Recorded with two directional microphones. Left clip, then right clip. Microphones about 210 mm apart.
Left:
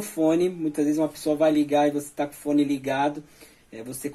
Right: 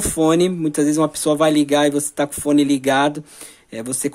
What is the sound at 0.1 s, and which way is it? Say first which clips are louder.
Speech: right 6 dB; 45° right (ahead or behind).